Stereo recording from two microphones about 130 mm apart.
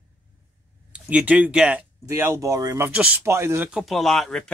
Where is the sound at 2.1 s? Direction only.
20° right (ahead or behind).